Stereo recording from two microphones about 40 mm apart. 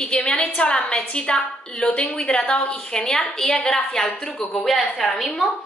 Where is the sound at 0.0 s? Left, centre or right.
Left; by 5.1 s centre.